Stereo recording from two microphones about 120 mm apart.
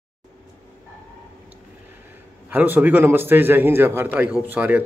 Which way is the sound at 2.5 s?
15° right (ahead or behind).